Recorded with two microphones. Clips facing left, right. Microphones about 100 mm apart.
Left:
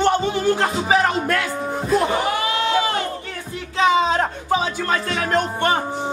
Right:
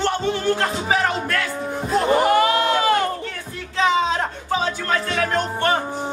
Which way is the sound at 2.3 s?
45° right (ahead or behind).